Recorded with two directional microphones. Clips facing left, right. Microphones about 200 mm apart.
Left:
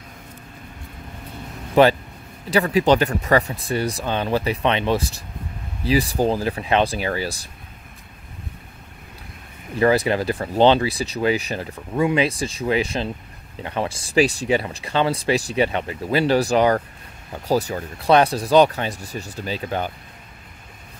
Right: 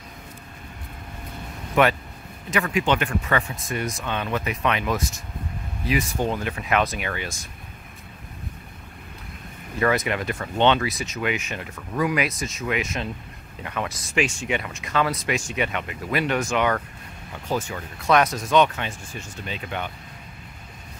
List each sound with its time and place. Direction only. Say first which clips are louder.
1.8 s speech: left 5 dB; 30° left (ahead or behind)
9.8 s speech: left 5 dB; 30° left (ahead or behind)